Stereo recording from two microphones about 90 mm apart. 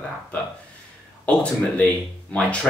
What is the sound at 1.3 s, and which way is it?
Speech, 15° left (ahead or behind).